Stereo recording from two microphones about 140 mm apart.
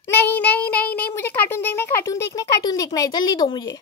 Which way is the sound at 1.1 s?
15° left (ahead or behind).